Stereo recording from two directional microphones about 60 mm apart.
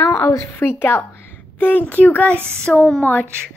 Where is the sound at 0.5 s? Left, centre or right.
Left.